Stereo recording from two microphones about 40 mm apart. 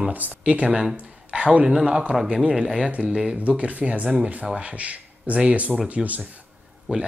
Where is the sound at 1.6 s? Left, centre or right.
Centre.